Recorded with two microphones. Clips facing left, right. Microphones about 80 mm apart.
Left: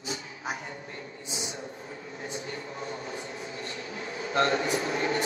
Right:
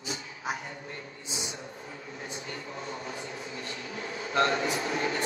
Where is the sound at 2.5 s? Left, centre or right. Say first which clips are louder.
Left 2 dB; left.